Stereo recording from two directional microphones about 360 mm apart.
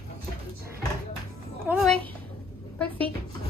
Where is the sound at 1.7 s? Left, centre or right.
Centre.